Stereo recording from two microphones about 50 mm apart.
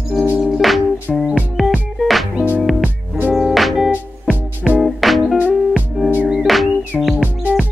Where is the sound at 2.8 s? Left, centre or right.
Right.